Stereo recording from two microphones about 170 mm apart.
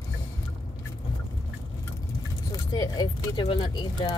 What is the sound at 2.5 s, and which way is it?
Speech, 20° left (ahead or behind).